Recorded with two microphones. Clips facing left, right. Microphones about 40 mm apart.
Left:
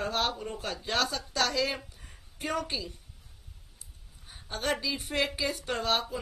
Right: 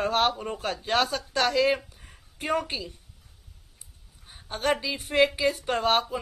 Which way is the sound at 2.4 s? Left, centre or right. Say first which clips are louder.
Right 4 dB; right.